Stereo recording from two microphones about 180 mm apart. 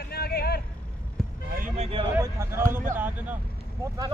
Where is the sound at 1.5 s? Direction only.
50° right (ahead or behind).